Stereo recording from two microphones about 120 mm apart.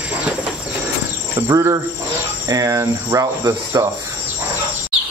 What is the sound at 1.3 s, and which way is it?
Speech, 25° right (ahead or behind).